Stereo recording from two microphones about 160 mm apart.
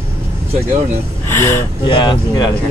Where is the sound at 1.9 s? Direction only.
30° left (ahead or behind).